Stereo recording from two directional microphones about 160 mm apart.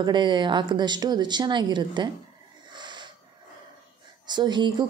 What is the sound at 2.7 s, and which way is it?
Wheeze, 30° right (ahead or behind).